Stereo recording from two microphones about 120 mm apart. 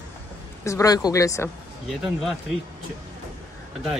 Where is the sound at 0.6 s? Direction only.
25° left (ahead or behind).